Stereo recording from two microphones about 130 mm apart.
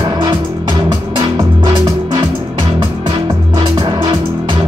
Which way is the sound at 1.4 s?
30° right (ahead or behind).